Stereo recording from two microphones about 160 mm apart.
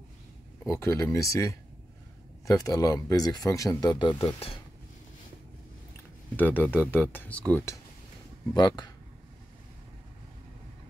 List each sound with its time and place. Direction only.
0.7 s speech: 20° left (ahead or behind)
6.3 s speech: 10° left (ahead or behind)
8.5 s speech: 25° left (ahead or behind)